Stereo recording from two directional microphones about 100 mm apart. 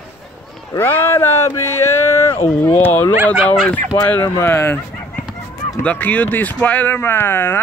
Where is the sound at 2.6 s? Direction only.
20° left (ahead or behind).